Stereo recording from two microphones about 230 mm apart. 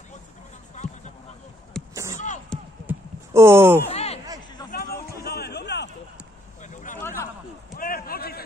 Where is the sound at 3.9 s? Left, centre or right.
Left.